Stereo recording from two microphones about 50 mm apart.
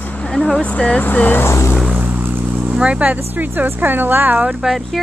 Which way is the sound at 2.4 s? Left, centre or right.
Right.